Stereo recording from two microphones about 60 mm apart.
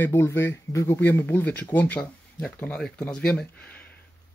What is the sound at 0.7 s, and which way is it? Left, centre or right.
Speech, left.